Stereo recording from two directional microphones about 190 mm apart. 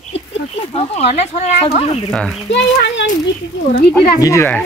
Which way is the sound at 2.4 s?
70° left (ahead or behind).